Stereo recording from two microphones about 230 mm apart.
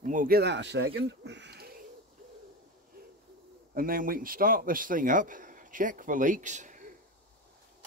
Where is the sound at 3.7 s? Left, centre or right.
Right.